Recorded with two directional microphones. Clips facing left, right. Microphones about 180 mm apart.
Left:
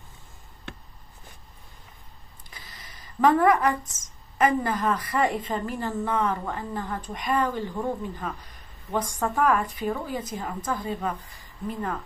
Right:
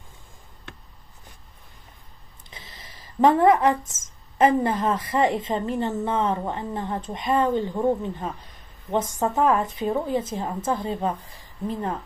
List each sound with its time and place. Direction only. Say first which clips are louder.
2.5 s speech: right 3 dB; 25° right (ahead or behind)